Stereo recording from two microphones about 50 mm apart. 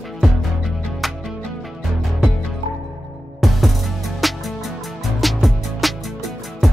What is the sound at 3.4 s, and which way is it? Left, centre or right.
Music, centre.